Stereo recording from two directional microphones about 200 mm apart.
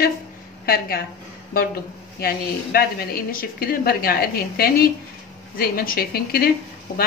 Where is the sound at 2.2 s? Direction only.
50° left (ahead or behind).